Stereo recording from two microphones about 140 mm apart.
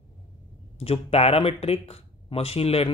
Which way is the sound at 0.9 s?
45° left (ahead or behind).